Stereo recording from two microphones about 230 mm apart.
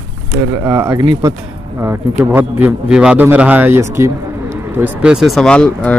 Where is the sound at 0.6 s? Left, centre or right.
Centre.